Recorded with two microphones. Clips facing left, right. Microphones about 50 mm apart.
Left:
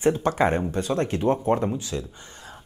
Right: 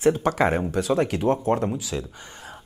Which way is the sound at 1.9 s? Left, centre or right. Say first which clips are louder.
Right 1 dB; right.